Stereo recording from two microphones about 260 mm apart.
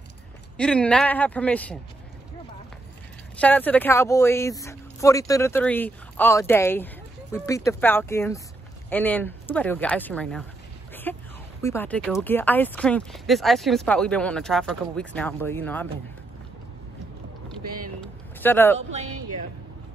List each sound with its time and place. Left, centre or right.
0.6 s speech: centre
3.3 s speech: centre
11.1 s a sound: centre
11.6 s speech: centre
18.4 s speech: centre
18.8 s speech: right